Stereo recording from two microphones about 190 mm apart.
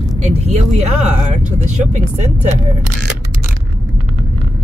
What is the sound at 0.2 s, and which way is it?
Speech, 35° right (ahead or behind).